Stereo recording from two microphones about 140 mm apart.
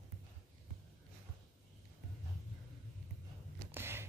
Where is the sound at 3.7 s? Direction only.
15° right (ahead or behind).